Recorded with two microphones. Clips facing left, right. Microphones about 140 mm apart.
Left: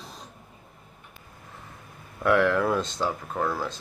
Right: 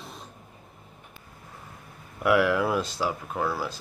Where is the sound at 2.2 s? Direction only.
10° right (ahead or behind).